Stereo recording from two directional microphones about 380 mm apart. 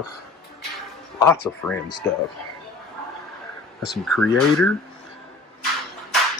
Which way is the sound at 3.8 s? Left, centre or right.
Centre.